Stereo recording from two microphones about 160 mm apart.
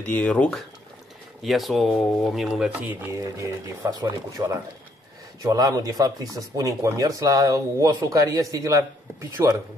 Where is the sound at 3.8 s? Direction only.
20° right (ahead or behind).